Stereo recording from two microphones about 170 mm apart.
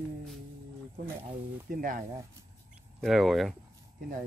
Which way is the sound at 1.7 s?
55° right (ahead or behind).